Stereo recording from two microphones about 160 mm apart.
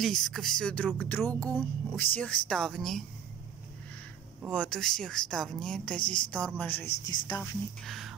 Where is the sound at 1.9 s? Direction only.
10° left (ahead or behind).